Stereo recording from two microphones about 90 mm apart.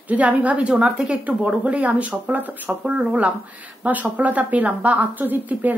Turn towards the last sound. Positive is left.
turn(degrees=-20)  # may be behind; listen again after turning